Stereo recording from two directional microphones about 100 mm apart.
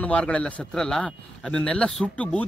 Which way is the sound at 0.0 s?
10° left (ahead or behind).